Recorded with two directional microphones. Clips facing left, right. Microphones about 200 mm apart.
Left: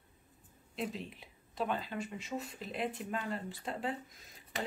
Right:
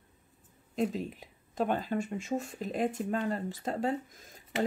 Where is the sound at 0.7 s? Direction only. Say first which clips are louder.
Right 8 dB; 45° right (ahead or behind).